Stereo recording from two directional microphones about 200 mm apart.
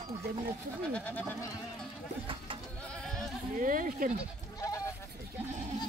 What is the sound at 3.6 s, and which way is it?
Speech, 45° right (ahead or behind).